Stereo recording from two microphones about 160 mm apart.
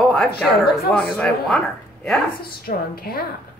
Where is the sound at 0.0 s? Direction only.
Centre (ahead or behind).